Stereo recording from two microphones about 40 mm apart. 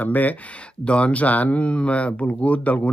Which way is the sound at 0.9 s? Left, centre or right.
Left.